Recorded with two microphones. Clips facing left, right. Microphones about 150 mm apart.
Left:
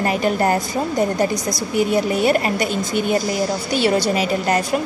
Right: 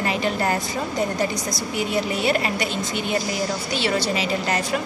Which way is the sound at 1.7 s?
45° left (ahead or behind).